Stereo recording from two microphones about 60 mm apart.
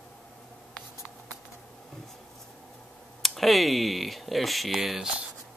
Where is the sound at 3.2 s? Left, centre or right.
Centre.